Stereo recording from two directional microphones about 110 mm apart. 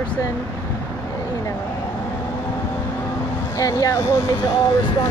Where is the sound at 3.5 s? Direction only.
30° left (ahead or behind).